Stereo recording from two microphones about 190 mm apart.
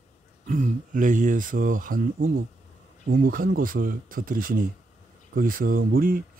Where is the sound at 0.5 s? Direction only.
45° right (ahead or behind).